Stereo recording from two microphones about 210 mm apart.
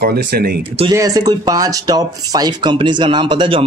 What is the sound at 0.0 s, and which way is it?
Speech, 50° right (ahead or behind).